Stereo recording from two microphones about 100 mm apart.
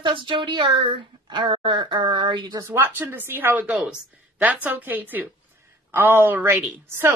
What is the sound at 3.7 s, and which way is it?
Speech, centre (ahead or behind).